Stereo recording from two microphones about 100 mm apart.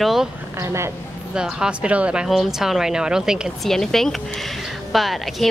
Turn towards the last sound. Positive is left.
turn(degrees=0)  # may be behind; listen again after turning